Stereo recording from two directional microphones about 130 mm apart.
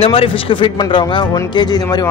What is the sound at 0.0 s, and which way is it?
Speech, 45° left (ahead or behind).